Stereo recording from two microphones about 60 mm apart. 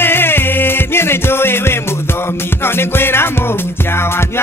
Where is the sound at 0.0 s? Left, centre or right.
Left.